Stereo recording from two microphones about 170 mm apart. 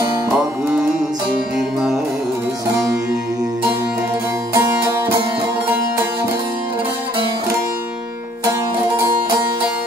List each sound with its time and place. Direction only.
4.6 s music: 20° right (ahead or behind)